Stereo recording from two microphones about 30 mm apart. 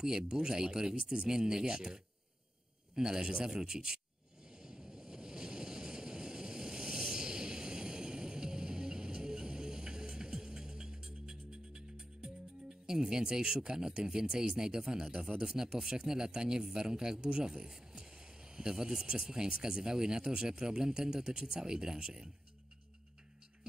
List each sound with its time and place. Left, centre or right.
0.0 s speech: right
4.5 s waves: right
12.8 s speech: right
17.9 s a sound: right
19.0 s speech: right